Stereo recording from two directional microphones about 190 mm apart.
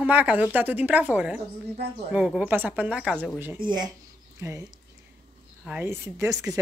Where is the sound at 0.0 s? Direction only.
10° right (ahead or behind).